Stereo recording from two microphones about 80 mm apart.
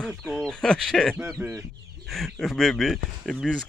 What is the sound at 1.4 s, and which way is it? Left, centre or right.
Speech, right.